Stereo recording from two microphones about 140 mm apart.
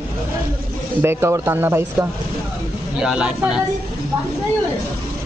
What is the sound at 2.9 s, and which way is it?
Speech, 5° right (ahead or behind).